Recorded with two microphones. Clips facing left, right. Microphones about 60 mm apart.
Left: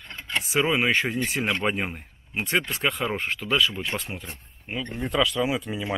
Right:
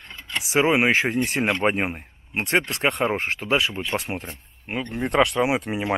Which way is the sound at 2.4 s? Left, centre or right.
Right.